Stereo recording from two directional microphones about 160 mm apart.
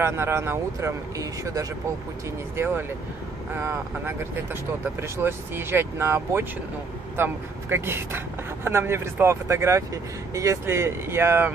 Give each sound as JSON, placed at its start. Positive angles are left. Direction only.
{"t": 0.0, "sound": "speech", "side_deg": -15}